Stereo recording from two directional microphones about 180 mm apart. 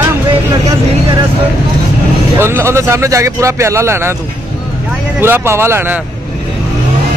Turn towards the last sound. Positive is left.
turn(degrees=-15)  # may be behind; listen again after turning